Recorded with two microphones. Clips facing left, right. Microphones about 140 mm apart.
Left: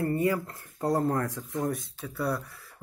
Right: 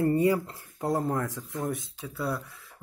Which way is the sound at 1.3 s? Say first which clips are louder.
Left 2 dB; 20° left (ahead or behind).